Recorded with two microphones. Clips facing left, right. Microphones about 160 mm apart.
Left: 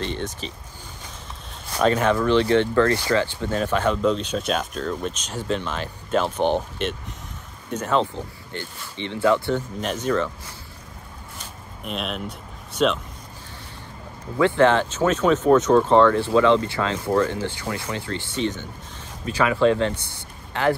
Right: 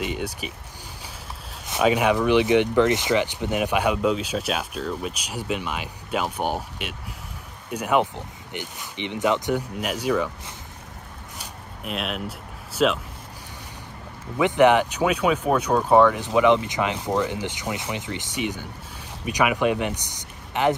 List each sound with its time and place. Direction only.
0.0 s speech: 10° right (ahead or behind)
1.8 s speech: 10° right (ahead or behind)
11.3 s zipper: 5° right (ahead or behind)
14.4 s speech: 15° right (ahead or behind)